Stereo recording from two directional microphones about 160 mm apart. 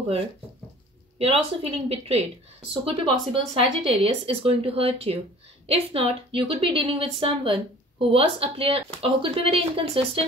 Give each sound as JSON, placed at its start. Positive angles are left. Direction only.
{"t": 1.1, "sound": "a woman's voice", "side_deg": -40}